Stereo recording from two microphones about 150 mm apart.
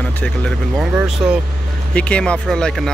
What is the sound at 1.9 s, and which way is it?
Speech, 10° left (ahead or behind).